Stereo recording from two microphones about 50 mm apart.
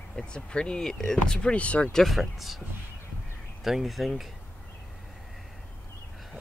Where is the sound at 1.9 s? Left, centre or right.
Centre.